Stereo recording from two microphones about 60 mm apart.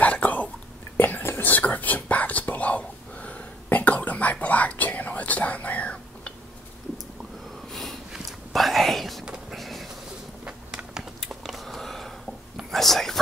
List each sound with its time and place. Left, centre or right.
0.0 s whispering: left
7.7 s sniff: centre
8.1 s whispering: centre
9.5 s vehicle: centre
10.4 s a sound: centre
11.2 s a sound: centre
12.7 s whispering: centre